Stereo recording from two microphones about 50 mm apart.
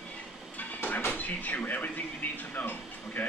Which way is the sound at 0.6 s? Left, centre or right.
Left.